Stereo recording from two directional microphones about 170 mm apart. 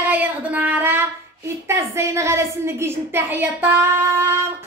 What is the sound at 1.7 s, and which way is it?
A child's voice, 15° right (ahead or behind).